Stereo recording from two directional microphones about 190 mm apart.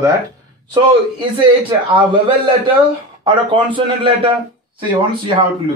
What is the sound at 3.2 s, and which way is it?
Speech, 25° right (ahead or behind).